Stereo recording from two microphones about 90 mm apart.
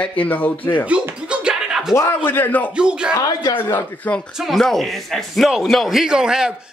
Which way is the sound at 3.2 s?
40° left (ahead or behind).